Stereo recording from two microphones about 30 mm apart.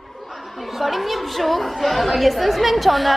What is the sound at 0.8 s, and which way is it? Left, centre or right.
Chatter, centre.